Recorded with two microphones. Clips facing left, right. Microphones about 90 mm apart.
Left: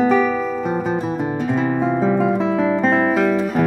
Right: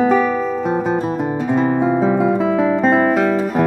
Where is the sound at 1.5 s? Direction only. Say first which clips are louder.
Right 4 dB; centre (ahead or behind).